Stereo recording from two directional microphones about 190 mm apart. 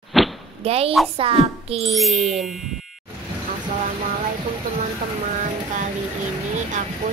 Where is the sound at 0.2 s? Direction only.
Centre (ahead or behind).